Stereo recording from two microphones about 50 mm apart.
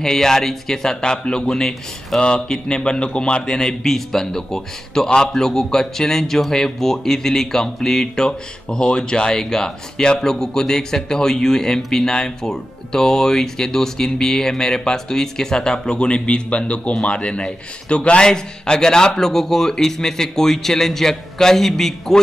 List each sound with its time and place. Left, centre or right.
0.0 s speech: centre